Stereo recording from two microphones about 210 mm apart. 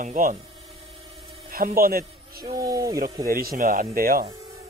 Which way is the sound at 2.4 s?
20° right (ahead or behind).